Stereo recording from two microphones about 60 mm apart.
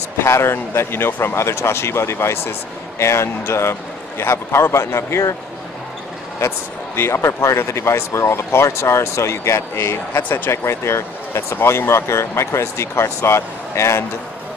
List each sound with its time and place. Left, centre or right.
0.2 s speech: left
7.0 s speech: left
10.2 s speech: left
10.5 s speech: left